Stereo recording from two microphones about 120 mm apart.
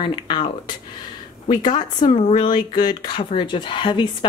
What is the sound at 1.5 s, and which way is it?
A woman's voice, 40° left (ahead or behind).